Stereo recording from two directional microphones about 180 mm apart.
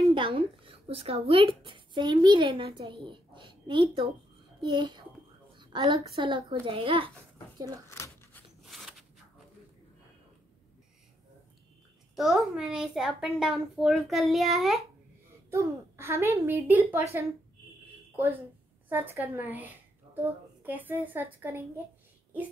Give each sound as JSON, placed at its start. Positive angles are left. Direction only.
{"t": 0.0, "sound": "a child's voice", "side_deg": -30}
{"t": 7.9, "sound": "a sound", "side_deg": 15}
{"t": 8.6, "sound": "a sound", "side_deg": 0}
{"t": 12.2, "sound": "a child's voice", "side_deg": 0}
{"t": 15.5, "sound": "a woman's voice", "side_deg": -15}
{"t": 18.9, "sound": "a woman's voice", "side_deg": -10}